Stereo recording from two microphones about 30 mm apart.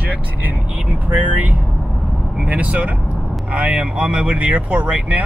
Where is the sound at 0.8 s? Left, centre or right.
Right.